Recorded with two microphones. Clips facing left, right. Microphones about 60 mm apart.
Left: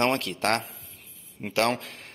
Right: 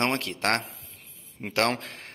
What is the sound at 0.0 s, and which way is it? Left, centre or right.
A man's voice, right.